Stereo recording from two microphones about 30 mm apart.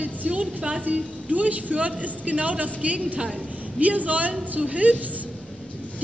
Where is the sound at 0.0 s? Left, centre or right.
Right.